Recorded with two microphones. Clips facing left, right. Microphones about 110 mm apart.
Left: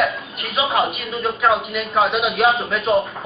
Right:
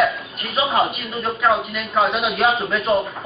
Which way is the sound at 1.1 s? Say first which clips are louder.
Left 1 dB; centre (ahead or behind).